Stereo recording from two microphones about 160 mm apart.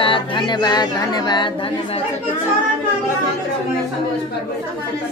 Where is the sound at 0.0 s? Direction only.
30° left (ahead or behind).